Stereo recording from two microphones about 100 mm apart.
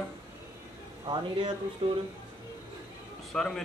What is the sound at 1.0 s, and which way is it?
Speech, 55° right (ahead or behind).